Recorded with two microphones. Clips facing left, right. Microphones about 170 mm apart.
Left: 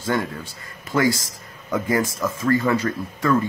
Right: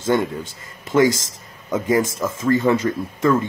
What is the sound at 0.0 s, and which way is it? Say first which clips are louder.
Speech: right 4 dB; 25° right (ahead or behind).